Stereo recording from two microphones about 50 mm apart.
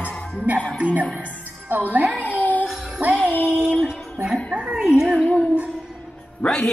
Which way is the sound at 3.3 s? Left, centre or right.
Left.